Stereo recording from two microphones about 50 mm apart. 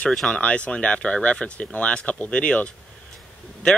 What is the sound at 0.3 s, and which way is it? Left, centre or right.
Speech, left.